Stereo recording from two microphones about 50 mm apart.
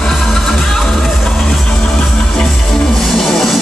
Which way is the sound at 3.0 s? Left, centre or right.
Centre.